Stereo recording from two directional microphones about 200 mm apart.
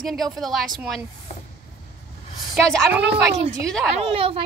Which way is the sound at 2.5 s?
Centre (ahead or behind).